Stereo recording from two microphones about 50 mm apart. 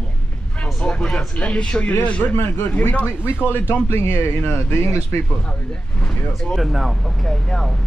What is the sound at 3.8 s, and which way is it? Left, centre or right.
Speech, left.